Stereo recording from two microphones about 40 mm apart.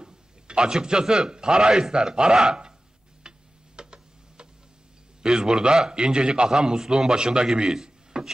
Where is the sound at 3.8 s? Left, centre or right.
Right.